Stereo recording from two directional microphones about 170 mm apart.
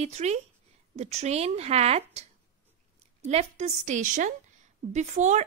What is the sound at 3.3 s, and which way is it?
A woman's voice, 40° right (ahead or behind).